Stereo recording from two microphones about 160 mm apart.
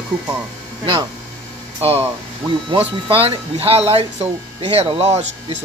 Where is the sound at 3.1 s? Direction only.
35° right (ahead or behind).